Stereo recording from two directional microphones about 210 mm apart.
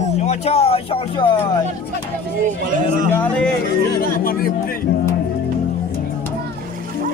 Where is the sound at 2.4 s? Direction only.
40° right (ahead or behind).